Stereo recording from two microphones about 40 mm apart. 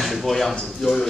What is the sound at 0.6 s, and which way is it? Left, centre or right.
Speech, centre.